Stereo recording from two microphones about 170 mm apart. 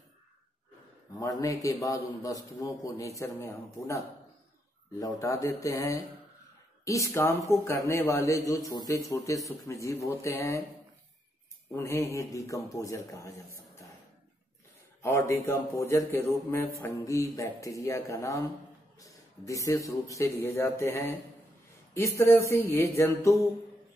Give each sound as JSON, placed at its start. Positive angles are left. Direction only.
{"t": 1.4, "sound": "a man's voice", "side_deg": 20}
{"t": 11.7, "sound": "a man's voice", "side_deg": 15}
{"t": 15.0, "sound": "speech", "side_deg": 15}